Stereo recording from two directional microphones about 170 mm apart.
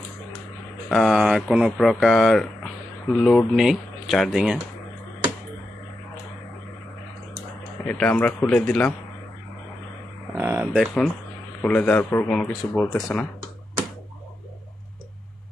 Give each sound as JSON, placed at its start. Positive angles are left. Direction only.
{"t": 0.8, "sound": "speech", "side_deg": 0}
{"t": 7.8, "sound": "speech", "side_deg": 10}
{"t": 10.3, "sound": "a sound", "side_deg": -15}
{"t": 11.6, "sound": "speech", "side_deg": 10}